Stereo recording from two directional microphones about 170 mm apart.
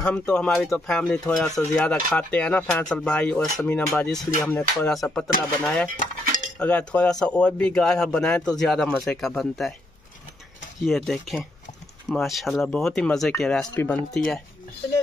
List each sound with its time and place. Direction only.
0.0 s speech: 5° left (ahead or behind)
10.9 s speech: centre (ahead or behind)